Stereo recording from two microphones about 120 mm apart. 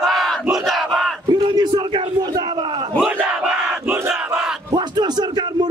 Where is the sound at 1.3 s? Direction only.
40° right (ahead or behind).